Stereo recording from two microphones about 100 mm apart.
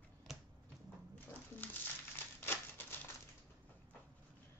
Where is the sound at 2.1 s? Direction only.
20° left (ahead or behind).